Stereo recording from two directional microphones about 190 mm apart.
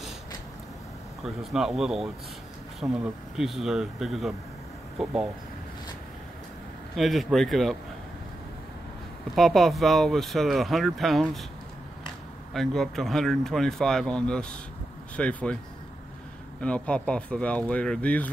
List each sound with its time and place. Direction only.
1.2 s speech: centre (ahead or behind)
7.0 s speech: centre (ahead or behind)
9.3 s speech: centre (ahead or behind)
12.5 s speech: centre (ahead or behind)
16.6 s speech: 5° left (ahead or behind)